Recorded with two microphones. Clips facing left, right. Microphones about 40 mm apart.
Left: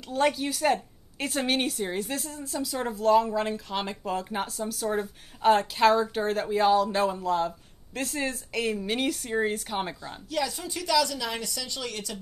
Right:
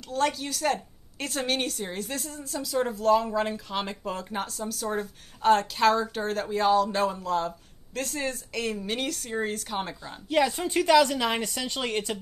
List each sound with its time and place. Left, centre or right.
0.1 s a woman's voice: centre
10.3 s a woman's voice: right